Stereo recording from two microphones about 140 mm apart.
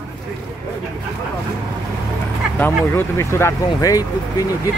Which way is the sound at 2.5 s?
15° left (ahead or behind).